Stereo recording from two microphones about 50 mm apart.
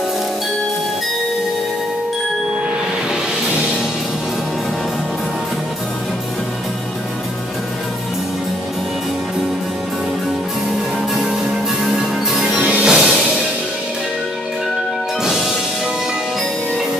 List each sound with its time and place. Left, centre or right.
11.8 s music: centre
12.5 s music: right
12.8 s music: centre
15.2 s music: centre